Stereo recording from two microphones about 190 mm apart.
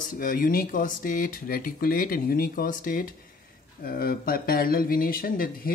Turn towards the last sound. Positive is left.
turn(degrees=50)  # may be behind; listen again after turning